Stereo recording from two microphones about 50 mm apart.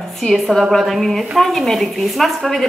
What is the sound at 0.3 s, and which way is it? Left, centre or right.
A woman's voice, centre.